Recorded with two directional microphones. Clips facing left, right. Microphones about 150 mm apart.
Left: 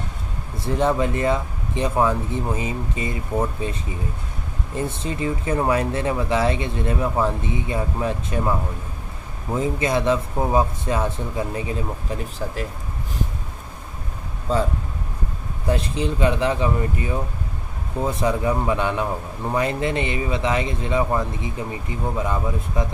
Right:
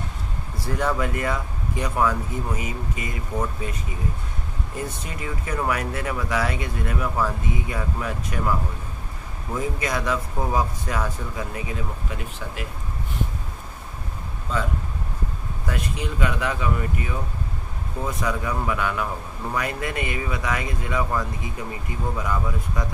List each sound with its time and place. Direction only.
0.7 s speech: 25° left (ahead or behind)
4.7 s speech: 25° left (ahead or behind)
14.5 s speech: 35° left (ahead or behind)